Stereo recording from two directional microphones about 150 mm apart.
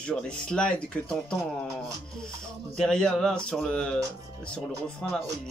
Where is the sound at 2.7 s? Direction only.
5° left (ahead or behind).